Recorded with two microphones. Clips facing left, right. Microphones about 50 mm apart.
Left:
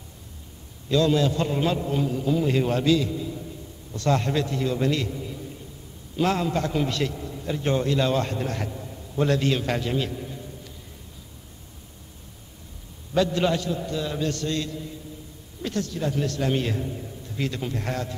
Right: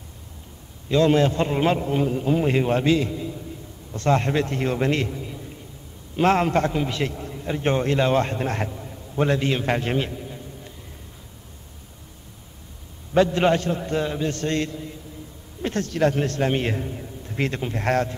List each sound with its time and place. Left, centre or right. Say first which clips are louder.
0.8 s a man's voice: right 3 dB; right
6.1 s a man's voice: right 5 dB; right
6.7 s a man's voice: even; centre
7.4 s a man's voice: right 2 dB; right
9.1 s a man's voice: right 1 dB; right
13.1 s a man's voice: right 4 dB; right
15.9 s speech: right 8 dB; right
16.2 s a man's voice: right 2 dB; right
17.8 s speech: right 8 dB; right